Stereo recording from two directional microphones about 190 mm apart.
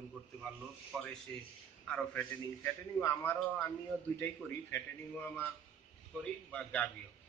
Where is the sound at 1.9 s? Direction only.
10° left (ahead or behind).